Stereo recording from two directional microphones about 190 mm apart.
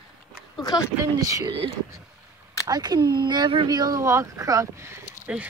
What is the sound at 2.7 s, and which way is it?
Speech, 20° right (ahead or behind).